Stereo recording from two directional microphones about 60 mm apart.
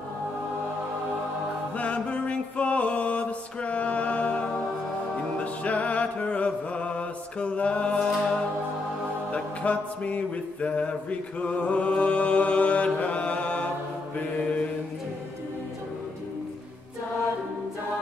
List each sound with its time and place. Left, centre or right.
1.8 s music: left
9.3 s music: left
14.1 s mantra: centre